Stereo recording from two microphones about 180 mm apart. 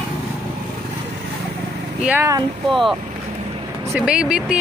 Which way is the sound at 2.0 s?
15° right (ahead or behind).